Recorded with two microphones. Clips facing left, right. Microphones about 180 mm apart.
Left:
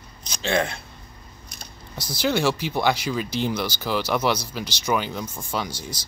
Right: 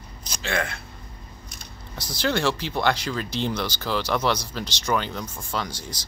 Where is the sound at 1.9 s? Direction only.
10° left (ahead or behind).